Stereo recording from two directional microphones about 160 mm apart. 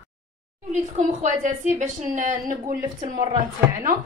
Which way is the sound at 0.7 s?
50° right (ahead or behind).